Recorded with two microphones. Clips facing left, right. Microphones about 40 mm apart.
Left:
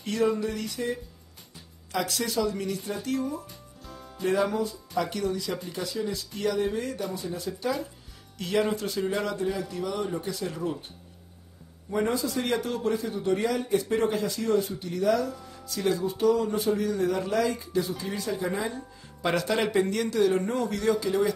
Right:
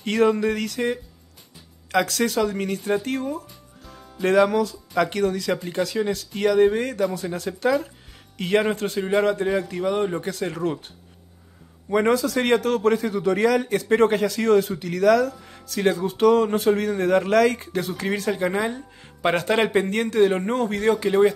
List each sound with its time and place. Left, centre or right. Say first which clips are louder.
0.0 s a man's voice: right 6 dB; right
3.4 s music: even; centre
4.2 s speech: right 7 dB; right
7.2 s a man's voice: right 5 dB; right
11.9 s a man's voice: right 7 dB; right
12.4 s a man's voice: right 10 dB; right
19.2 s a man's voice: right 5 dB; right